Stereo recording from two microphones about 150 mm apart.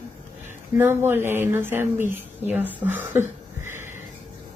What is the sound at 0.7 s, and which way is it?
Speech, 15° right (ahead or behind).